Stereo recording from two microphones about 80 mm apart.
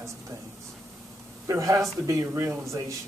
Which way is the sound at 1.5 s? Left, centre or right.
Right.